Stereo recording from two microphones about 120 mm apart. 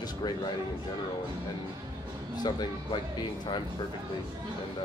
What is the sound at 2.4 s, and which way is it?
Speech, 35° left (ahead or behind).